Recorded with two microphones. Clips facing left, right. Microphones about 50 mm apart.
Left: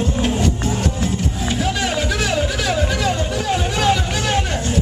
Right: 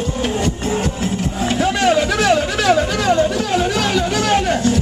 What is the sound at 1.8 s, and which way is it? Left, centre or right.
Music, right.